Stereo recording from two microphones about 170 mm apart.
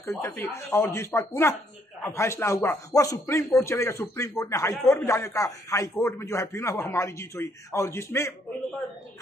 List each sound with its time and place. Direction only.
0.0 s speech: 15° left (ahead or behind)